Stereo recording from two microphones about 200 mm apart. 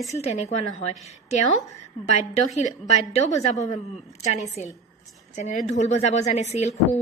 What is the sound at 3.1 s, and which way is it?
Speech, 35° left (ahead or behind).